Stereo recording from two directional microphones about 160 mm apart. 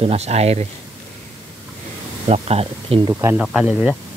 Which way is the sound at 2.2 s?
40° right (ahead or behind).